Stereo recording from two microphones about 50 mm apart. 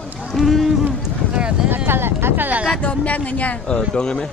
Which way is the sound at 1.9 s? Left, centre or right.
Right.